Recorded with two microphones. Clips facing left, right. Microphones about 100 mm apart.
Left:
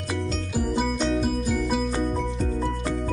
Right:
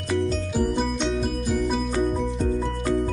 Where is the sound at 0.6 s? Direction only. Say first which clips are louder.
Even; 5° left (ahead or behind).